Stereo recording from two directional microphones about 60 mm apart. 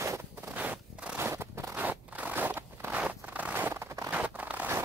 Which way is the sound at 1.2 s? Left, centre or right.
Right.